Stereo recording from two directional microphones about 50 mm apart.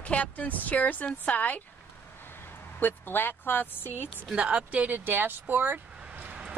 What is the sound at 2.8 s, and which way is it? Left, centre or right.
Speech, left.